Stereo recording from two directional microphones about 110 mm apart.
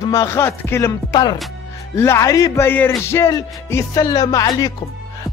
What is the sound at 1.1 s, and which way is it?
Speech, 40° left (ahead or behind).